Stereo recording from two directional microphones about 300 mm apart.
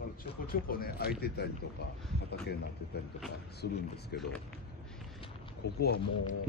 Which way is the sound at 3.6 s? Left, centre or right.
Left.